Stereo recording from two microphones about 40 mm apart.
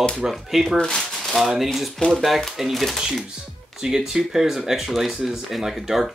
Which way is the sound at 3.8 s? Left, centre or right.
Centre.